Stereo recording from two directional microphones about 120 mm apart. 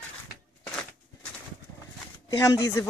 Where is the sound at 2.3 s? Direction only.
25° left (ahead or behind).